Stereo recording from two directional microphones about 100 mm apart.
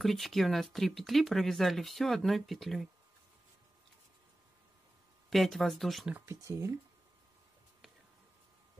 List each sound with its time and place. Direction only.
0.0 s speech: centre (ahead or behind)
5.3 s speech: centre (ahead or behind)
6.2 s speech: 30° right (ahead or behind)